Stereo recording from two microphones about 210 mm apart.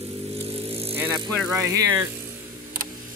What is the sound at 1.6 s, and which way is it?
Speech, 10° right (ahead or behind).